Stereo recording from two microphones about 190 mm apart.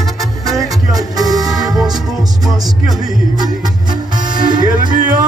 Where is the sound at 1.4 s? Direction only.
Centre (ahead or behind).